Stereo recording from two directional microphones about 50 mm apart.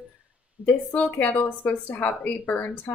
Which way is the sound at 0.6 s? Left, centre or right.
Right.